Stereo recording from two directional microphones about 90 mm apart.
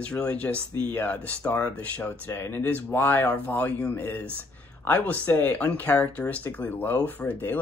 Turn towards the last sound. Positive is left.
turn(degrees=20)  # may be behind; listen again after turning